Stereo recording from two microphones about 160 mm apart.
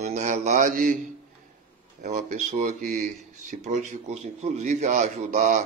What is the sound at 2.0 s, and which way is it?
Speech, 50° right (ahead or behind).